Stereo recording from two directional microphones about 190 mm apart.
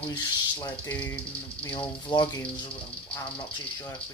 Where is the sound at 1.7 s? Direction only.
25° left (ahead or behind).